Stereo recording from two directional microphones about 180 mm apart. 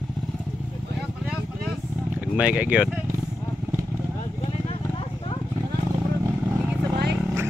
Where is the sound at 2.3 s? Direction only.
5° right (ahead or behind).